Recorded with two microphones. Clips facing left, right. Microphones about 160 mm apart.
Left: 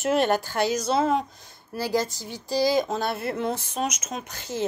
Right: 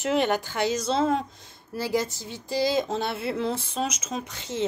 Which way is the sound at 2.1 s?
25° right (ahead or behind).